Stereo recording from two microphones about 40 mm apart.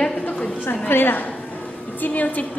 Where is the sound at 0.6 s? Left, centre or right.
Left.